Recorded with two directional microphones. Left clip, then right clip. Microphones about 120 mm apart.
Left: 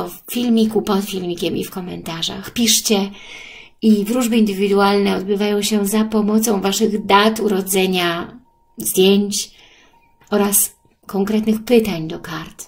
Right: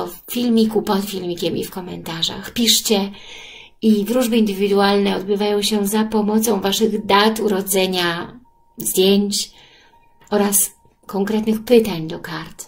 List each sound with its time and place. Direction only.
0.0 s a woman's voice: 40° left (ahead or behind)
11.1 s a woman's voice: 40° left (ahead or behind)